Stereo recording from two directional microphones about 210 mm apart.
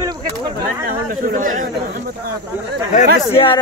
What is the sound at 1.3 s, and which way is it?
Speech, 40° right (ahead or behind).